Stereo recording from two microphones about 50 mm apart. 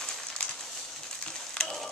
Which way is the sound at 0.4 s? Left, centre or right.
Left.